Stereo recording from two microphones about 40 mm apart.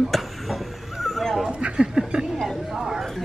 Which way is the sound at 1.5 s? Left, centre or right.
Right.